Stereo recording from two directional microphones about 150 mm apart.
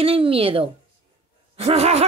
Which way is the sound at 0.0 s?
40° right (ahead or behind).